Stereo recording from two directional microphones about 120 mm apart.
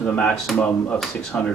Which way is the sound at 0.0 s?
10° left (ahead or behind).